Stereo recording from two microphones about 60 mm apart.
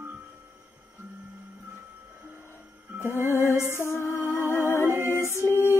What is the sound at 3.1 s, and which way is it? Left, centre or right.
Music, left.